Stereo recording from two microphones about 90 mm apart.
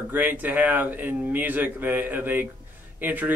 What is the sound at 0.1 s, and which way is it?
Speech, 20° right (ahead or behind).